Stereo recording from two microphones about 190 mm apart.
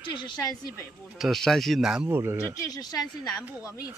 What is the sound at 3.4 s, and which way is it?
Speech, 10° right (ahead or behind).